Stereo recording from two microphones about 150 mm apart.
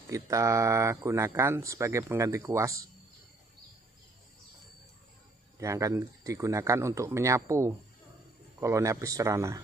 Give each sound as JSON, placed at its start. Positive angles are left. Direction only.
{"t": 0.1, "sound": "speech", "side_deg": -20}
{"t": 5.6, "sound": "speech", "side_deg": -20}